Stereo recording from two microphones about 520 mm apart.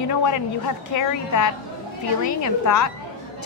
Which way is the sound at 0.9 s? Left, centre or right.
Left.